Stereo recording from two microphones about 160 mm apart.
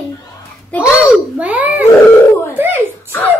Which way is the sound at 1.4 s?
10° right (ahead or behind).